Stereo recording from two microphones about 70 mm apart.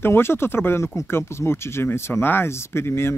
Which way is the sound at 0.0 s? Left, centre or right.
Left.